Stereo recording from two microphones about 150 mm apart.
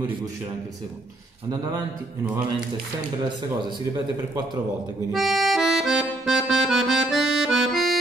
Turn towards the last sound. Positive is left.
turn(degrees=0)  # may be behind; listen again after turning